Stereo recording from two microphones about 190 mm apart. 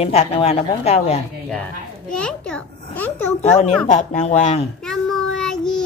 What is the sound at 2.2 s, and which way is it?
A child's voice, 5° left (ahead or behind).